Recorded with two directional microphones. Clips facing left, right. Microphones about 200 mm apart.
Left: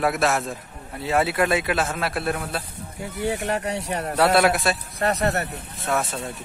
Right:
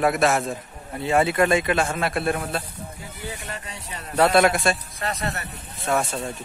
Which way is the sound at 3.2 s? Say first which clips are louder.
Left 11 dB; 70° left (ahead or behind).